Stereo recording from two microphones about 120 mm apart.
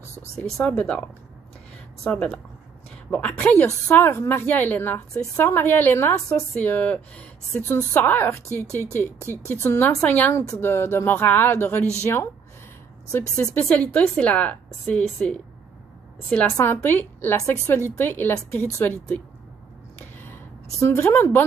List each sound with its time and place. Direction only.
0.4 s a woman's voice: 10° left (ahead or behind)
6.6 s a woman's voice: 15° left (ahead or behind)
13.7 s a woman's voice: 10° left (ahead or behind)
16.3 s a woman's voice: 5° left (ahead or behind)
16.5 s a woman's voice: 20° left (ahead or behind)
20.8 s speech: 20° left (ahead or behind)